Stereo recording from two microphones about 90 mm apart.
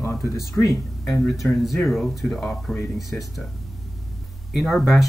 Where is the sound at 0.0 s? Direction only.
30° left (ahead or behind).